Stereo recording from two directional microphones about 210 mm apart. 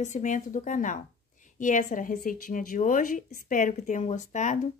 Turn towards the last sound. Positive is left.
turn(degrees=35)  # may be behind; listen again after turning